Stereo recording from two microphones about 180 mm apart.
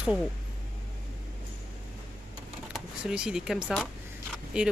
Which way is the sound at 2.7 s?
5° right (ahead or behind).